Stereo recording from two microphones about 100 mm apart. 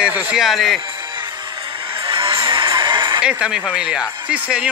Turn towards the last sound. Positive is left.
turn(degrees=-10)  # may be behind; listen again after turning